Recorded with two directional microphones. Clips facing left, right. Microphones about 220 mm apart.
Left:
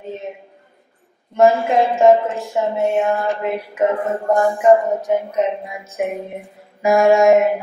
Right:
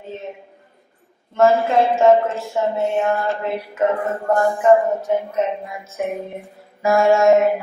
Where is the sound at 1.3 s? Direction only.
15° left (ahead or behind).